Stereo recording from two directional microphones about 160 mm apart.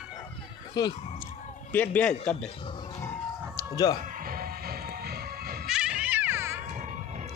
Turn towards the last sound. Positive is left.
turn(degrees=-15)  # may be behind; listen again after turning